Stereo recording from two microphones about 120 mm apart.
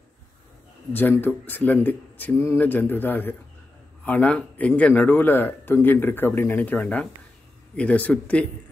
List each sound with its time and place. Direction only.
0.9 s speech: 15° left (ahead or behind)